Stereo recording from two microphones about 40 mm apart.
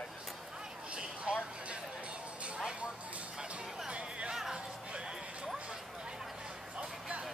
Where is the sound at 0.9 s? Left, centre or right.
Right.